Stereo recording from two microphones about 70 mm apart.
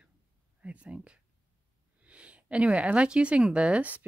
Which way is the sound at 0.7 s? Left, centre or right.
Centre.